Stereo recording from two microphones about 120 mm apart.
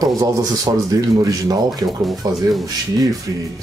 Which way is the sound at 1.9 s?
Centre (ahead or behind).